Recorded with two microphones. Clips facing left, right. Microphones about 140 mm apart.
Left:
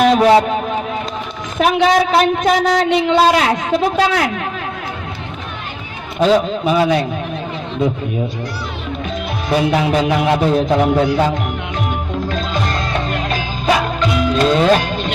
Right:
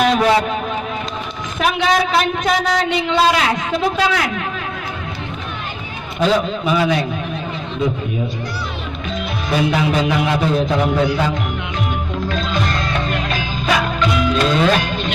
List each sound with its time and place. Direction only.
0.0 s a man's voice: 35° left (ahead or behind)
1.6 s a woman's voice: 45° left (ahead or behind)
6.6 s a man's voice: 40° left (ahead or behind)
9.5 s a woman's voice: 45° left (ahead or behind)
12.3 s music: 40° left (ahead or behind)